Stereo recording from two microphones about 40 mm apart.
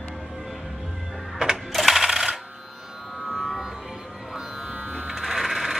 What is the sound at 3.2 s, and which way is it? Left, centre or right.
Music, centre.